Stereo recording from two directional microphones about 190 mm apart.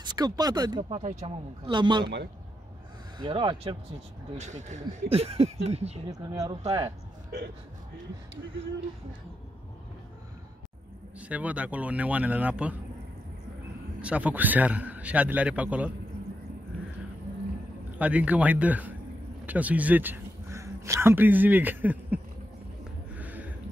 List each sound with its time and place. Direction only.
0.0 s speech: 20° right (ahead or behind)
3.2 s speech: 25° right (ahead or behind)
4.4 s speech: 40° right (ahead or behind)
6.0 s a man's voice: 20° right (ahead or behind)
6.6 s speech: 30° right (ahead or behind)
11.1 s a man's voice: 5° right (ahead or behind)
14.0 s a man's voice: 5° right (ahead or behind)
17.9 s a man's voice: 10° right (ahead or behind)
23.1 s a sound: 10° right (ahead or behind)